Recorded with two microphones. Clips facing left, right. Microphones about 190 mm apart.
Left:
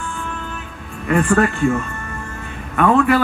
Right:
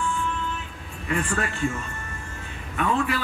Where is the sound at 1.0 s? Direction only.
65° left (ahead or behind).